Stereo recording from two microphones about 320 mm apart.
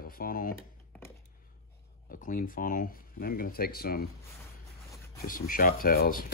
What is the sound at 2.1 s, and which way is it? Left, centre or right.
Speech, left.